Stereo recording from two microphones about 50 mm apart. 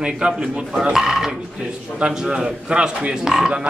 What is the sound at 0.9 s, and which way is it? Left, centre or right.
Speech, centre.